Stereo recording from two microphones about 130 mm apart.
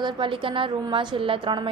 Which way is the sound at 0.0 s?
40° right (ahead or behind).